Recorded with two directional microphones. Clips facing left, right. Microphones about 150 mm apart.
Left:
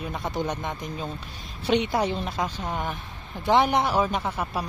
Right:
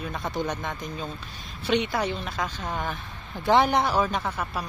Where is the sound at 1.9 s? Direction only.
20° left (ahead or behind).